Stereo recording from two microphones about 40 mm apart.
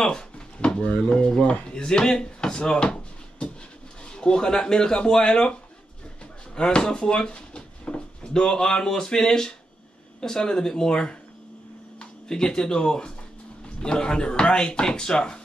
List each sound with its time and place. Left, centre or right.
0.0 s drawer open or close: centre
0.8 s speech: left
6.5 s drawer open or close: left
8.3 s speech: centre